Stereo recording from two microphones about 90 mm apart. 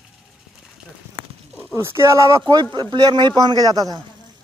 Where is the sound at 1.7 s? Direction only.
30° right (ahead or behind).